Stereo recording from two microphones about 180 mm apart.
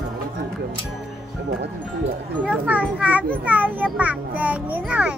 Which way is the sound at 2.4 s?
10° right (ahead or behind).